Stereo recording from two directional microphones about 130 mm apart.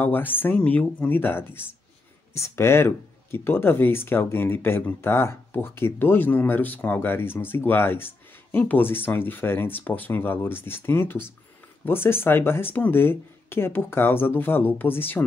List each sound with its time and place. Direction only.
0.0 s speech: 15° left (ahead or behind)